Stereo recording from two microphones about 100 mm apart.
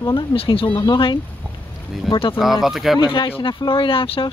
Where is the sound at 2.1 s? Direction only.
60° left (ahead or behind).